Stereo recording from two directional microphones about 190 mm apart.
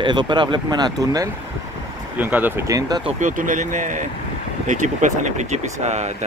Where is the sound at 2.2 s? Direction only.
10° right (ahead or behind).